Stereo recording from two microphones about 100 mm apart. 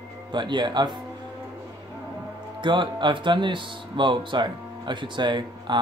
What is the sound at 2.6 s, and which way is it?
Speech, 50° right (ahead or behind).